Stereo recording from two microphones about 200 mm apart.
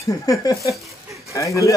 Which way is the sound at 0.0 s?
15° left (ahead or behind).